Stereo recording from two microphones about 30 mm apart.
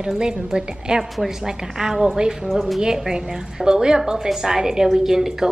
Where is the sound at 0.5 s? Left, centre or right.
Right.